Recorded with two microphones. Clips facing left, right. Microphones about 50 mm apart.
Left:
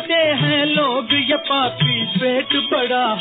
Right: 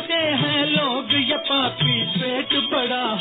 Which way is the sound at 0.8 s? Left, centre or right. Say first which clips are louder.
Left 4 dB; centre.